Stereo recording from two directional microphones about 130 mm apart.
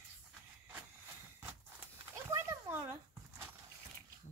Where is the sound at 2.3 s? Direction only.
25° right (ahead or behind).